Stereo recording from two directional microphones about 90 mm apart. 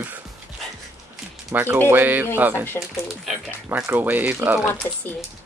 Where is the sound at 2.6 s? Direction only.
25° left (ahead or behind).